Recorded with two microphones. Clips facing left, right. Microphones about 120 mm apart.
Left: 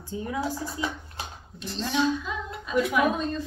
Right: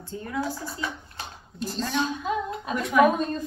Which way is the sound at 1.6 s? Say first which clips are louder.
Left 1 dB; 45° right (ahead or behind).